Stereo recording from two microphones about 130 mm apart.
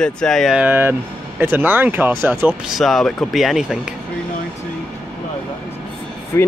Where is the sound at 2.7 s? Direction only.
Centre (ahead or behind).